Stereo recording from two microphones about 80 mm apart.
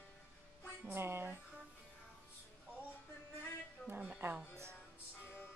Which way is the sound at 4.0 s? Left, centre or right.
Right.